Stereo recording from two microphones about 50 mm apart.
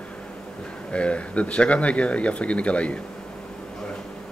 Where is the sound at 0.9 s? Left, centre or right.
Left.